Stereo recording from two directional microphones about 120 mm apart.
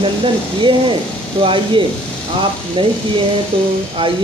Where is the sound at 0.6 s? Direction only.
45° right (ahead or behind).